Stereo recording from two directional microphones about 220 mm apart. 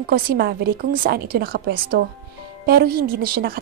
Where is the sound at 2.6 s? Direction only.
45° right (ahead or behind).